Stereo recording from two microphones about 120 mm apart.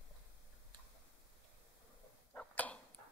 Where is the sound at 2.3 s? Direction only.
15° left (ahead or behind).